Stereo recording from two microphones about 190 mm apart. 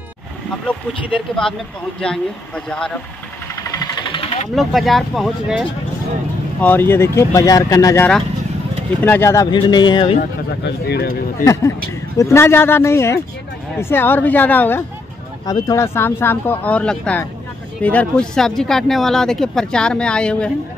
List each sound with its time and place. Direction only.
1.3 s speech: 5° left (ahead or behind)
3.8 s sewing machine: 20° left (ahead or behind)
4.6 s speech: centre (ahead or behind)
6.6 s speech: 10° left (ahead or behind)
10.6 s speech: 60° left (ahead or behind)
12.2 s speech: 15° left (ahead or behind)